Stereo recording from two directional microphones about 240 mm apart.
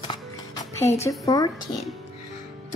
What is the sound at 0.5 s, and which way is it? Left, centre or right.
Speech, centre.